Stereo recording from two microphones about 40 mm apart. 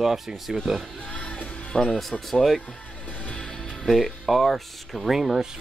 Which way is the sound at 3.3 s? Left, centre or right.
Left.